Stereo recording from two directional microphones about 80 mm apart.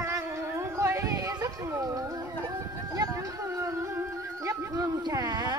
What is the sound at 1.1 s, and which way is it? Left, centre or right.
Music, right.